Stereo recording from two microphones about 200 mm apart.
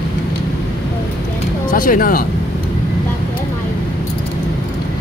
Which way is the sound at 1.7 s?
45° left (ahead or behind).